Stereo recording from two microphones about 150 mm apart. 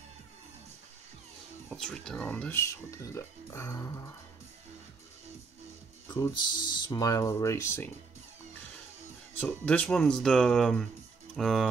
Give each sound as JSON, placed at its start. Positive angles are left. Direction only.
{"t": 1.7, "sound": "music", "side_deg": 5}
{"t": 2.1, "sound": "speech", "side_deg": 10}
{"t": 6.3, "sound": "speech", "side_deg": 30}
{"t": 9.4, "sound": "speech", "side_deg": 10}